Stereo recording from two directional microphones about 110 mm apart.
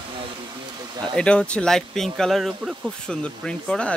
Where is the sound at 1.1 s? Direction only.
10° left (ahead or behind).